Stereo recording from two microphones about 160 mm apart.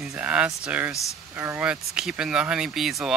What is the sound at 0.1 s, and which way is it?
Speech, 10° right (ahead or behind).